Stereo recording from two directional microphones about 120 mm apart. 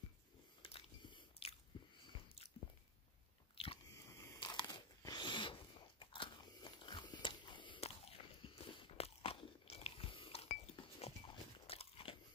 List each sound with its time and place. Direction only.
0.6 s biting: 50° left (ahead or behind)
3.5 s biting: 50° left (ahead or behind)
3.9 s biting: 25° left (ahead or behind)
4.4 s crunch: 35° left (ahead or behind); by 11.1 s 60° left (ahead or behind)
11.6 s biting: 50° left (ahead or behind)